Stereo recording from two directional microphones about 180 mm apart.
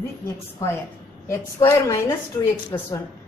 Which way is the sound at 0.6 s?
15° left (ahead or behind).